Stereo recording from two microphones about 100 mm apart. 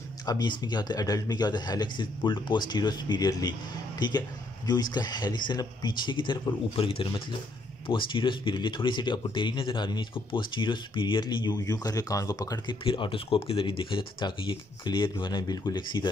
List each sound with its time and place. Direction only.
0.3 s speech: 45° left (ahead or behind)
6.7 s speech: 65° left (ahead or behind)
7.9 s speech: 55° left (ahead or behind); by 12.7 s 40° left (ahead or behind)
12.8 s speech: 60° left (ahead or behind)